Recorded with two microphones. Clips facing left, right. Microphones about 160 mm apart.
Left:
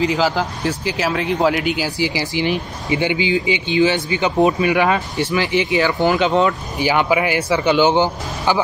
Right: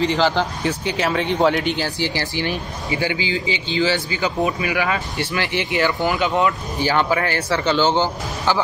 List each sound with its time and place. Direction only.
0.0 s speech: 5° left (ahead or behind)